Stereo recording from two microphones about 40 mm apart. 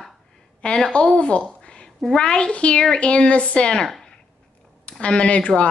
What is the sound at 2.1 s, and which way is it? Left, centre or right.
Speech, left.